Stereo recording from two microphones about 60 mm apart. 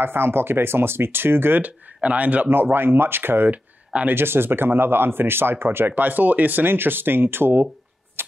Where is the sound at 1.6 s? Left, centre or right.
Right.